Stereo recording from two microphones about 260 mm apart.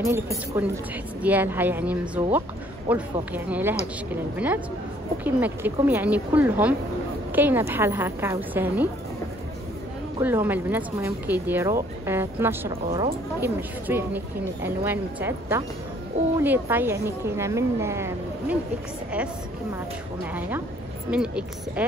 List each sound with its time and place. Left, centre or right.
0.1 s speech: centre
10.1 s speech: centre
12.8 s speech: right
13.4 s speech: centre
21.1 s speech: centre